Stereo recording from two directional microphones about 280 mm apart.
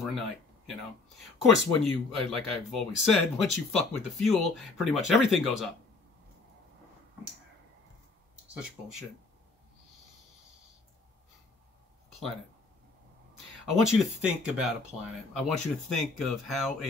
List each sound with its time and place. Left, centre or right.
1.1 s speech: centre
13.7 s speech: centre